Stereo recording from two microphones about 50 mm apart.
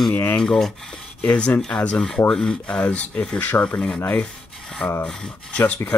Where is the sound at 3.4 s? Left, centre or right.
Left.